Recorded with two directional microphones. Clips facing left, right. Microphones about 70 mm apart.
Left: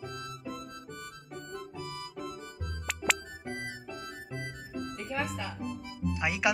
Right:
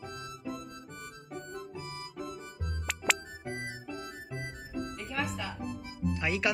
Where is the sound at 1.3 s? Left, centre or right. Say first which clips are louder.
Right 1 dB; centre.